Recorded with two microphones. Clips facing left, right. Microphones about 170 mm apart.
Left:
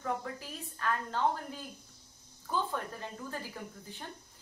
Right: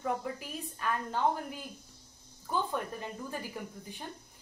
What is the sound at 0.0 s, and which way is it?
A woman's voice, 15° right (ahead or behind).